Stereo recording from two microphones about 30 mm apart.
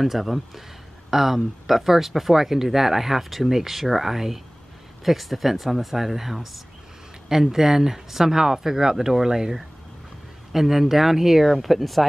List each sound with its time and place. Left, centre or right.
0.0 s speech: centre
7.2 s speech: centre